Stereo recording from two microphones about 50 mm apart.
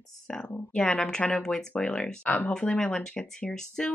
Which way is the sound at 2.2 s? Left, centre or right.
Left.